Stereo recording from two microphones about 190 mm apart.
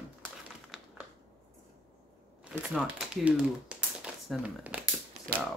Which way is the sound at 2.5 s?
Centre (ahead or behind).